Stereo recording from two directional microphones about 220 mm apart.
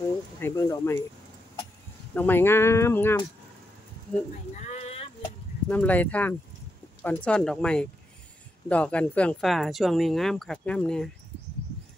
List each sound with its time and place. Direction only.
0.4 s speech: 15° left (ahead or behind)
2.1 s speech: 10° left (ahead or behind)
4.6 s a sound: 30° left (ahead or behind)
5.7 s speech: 5° left (ahead or behind)